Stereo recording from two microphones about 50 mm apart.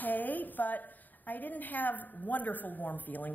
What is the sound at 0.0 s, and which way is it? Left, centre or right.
A woman's voice, left.